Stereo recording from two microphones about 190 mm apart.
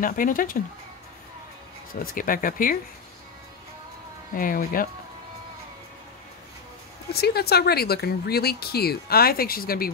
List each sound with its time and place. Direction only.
0.0 s speech: 45° left (ahead or behind)
2.1 s speech: 45° left (ahead or behind)
4.4 s speech: 50° left (ahead or behind)
7.1 s speech: 55° left (ahead or behind)